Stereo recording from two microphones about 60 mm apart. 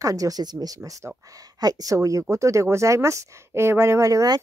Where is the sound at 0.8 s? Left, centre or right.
Right.